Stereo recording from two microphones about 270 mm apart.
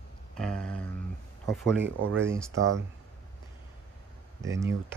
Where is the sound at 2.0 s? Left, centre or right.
Right.